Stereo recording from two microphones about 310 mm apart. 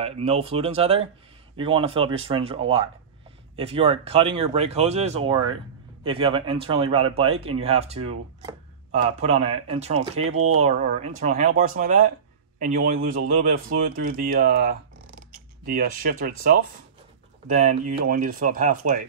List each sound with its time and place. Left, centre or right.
0.0 s speech: centre
10.3 s speech: right
10.6 s speech: right